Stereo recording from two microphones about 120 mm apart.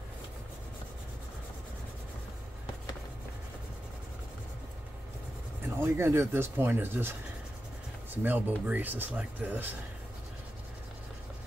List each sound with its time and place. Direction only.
5.8 s speech: 20° right (ahead or behind)